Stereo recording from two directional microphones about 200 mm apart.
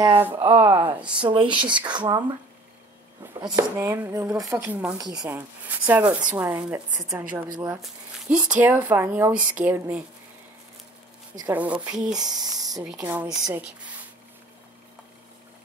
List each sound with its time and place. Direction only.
0.3 s speech: 30° right (ahead or behind)
0.6 s speech: 10° right (ahead or behind)
1.5 s speech: 25° right (ahead or behind)
3.4 s speech: 10° right (ahead or behind)
4.9 s speech: 20° right (ahead or behind)
5.9 s speech: 10° right (ahead or behind)
7.8 s speech: 5° right (ahead or behind)
11.3 s speech: 10° right (ahead or behind)
12.2 s speech: 20° right (ahead or behind)
12.8 s speech: 5° right (ahead or behind)